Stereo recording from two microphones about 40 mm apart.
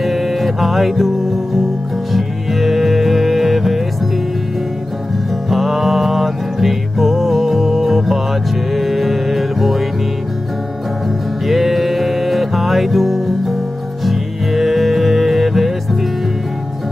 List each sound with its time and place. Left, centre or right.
0.0 s music: centre
5.5 s music: centre
11.4 s music: centre